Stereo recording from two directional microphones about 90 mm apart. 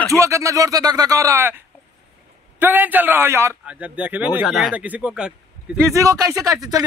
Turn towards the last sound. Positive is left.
turn(degrees=-45)  # may be behind; listen again after turning